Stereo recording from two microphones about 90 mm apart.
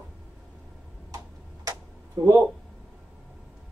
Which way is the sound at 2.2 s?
40° right (ahead or behind).